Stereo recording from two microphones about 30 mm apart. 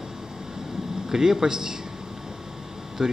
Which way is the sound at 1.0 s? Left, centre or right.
Centre.